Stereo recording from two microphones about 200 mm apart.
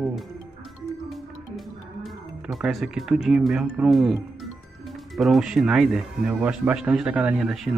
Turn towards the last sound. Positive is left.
turn(degrees=0)  # may be behind; listen again after turning